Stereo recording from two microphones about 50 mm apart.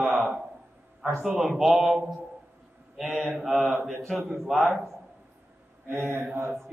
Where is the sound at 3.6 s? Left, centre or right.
Right.